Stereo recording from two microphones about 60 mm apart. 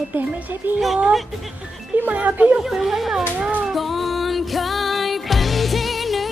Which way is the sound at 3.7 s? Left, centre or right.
Centre.